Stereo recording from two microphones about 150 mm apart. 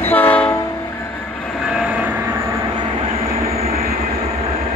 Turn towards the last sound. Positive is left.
turn(degrees=-45)  # may be behind; listen again after turning